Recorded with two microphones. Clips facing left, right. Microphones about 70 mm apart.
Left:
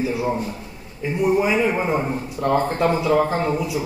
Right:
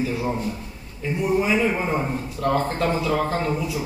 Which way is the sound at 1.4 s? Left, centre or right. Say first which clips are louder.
Left 2 dB; centre.